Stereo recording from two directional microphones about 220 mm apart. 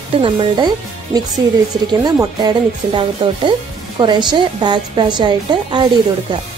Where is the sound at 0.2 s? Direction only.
25° right (ahead or behind).